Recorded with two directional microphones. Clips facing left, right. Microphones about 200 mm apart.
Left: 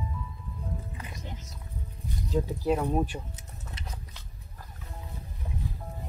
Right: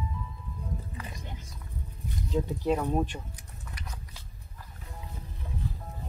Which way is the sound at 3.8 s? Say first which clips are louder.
Left 1 dB; 25° left (ahead or behind).